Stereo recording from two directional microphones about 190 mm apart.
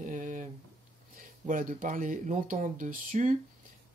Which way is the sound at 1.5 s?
45° right (ahead or behind).